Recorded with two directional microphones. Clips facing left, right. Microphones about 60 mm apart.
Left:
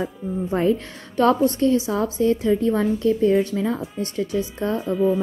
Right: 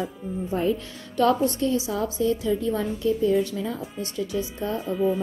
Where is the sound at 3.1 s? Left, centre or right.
Left.